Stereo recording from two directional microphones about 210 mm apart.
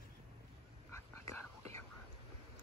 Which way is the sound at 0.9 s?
15° left (ahead or behind).